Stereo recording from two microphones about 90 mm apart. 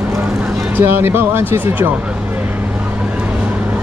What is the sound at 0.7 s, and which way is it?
Speech, 25° right (ahead or behind).